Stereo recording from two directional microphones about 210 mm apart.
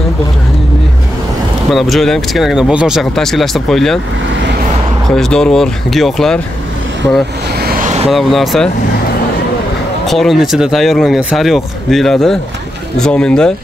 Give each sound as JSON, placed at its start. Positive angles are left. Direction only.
{"t": 1.7, "sound": "speech", "side_deg": 0}
{"t": 5.1, "sound": "speech", "side_deg": 5}
{"t": 7.6, "sound": "vehicle", "side_deg": -35}
{"t": 8.1, "sound": "speech", "side_deg": 0}
{"t": 10.0, "sound": "speech", "side_deg": 0}